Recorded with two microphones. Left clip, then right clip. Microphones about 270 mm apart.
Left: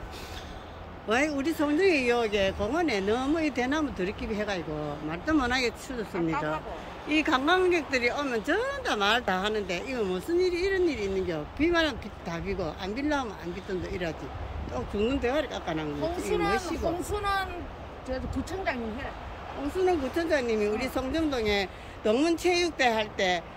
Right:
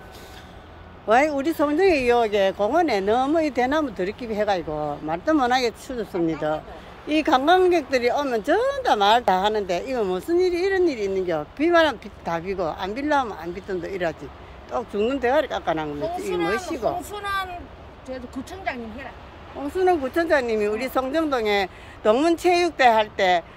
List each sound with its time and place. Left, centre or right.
1.0 s speech: centre